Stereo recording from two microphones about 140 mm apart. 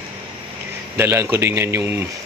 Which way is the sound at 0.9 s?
15° right (ahead or behind).